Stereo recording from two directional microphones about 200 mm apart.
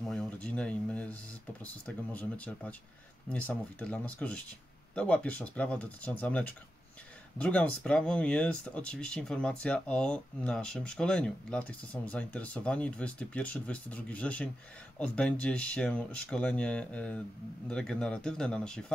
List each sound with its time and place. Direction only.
0.1 s speech: 5° left (ahead or behind)
2.1 s speech: 5° left (ahead or behind)